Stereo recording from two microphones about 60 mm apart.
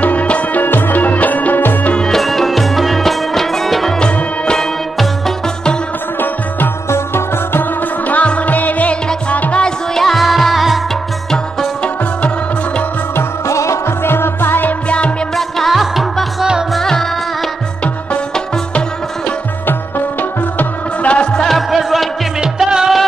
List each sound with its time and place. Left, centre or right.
0.0 s music: left
2.0 s music: centre
6.9 s music: left
8.1 s music: left; by 10.8 s centre
13.5 s music: left
14.0 s music: left
14.9 s music: left
15.3 s music: centre
20.2 s music: left; by 22.1 s centre
22.4 s music: centre